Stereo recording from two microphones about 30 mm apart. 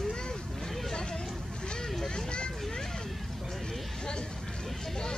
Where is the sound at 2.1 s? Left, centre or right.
Left.